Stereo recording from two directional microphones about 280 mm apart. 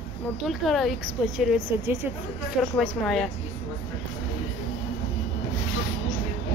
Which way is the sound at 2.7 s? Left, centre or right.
Centre.